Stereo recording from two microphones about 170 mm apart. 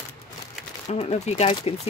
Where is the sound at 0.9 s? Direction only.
40° left (ahead or behind).